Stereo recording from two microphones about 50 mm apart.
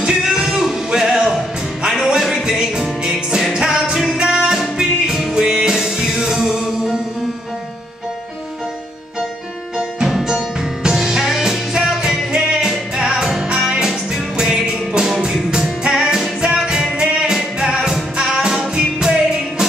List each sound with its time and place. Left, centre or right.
0.0 s music: centre
10.0 s music: centre